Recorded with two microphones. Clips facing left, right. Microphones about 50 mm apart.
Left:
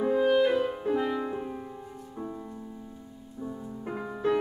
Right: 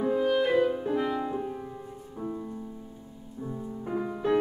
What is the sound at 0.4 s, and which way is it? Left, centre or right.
Music, centre.